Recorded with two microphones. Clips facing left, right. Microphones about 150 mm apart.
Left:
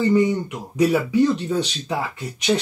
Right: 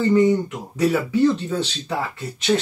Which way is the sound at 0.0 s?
15° left (ahead or behind).